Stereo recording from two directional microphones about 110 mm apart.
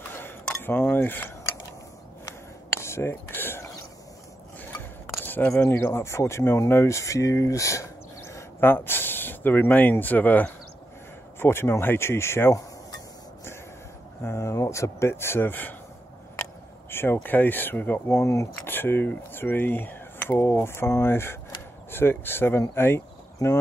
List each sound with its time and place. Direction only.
0.6 s speech: 20° left (ahead or behind)
2.8 s a sound: 25° left (ahead or behind)
4.6 s speech: 15° left (ahead or behind)
14.2 s speech: 25° left (ahead or behind)
16.9 s speech: 20° left (ahead or behind)